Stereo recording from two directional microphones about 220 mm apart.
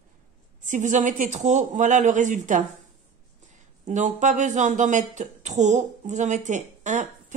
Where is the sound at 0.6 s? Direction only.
35° right (ahead or behind).